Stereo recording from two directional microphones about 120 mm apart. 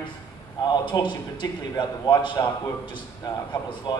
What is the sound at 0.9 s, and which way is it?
A man's voice, 35° left (ahead or behind).